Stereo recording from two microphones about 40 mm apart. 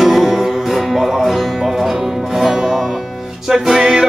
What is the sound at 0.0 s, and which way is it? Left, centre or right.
Music, centre.